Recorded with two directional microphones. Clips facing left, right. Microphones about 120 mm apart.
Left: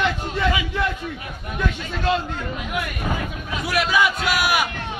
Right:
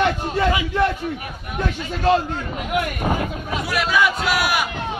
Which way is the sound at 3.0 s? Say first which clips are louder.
Right 4 dB; 35° right (ahead or behind).